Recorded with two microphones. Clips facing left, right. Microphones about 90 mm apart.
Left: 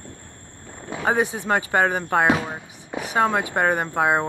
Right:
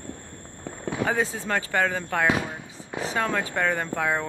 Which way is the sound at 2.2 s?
40° left (ahead or behind).